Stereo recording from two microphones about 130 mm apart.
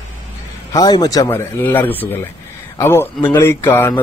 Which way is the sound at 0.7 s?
30° left (ahead or behind).